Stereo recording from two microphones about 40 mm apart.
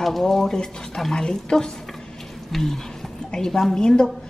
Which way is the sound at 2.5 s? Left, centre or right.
Centre.